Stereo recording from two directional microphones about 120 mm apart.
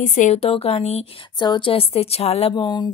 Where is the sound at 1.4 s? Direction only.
45° left (ahead or behind).